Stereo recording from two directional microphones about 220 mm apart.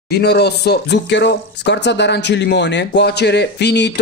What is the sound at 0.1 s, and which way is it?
Speech, 45° left (ahead or behind).